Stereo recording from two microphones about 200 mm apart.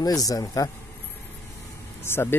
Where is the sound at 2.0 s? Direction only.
10° left (ahead or behind).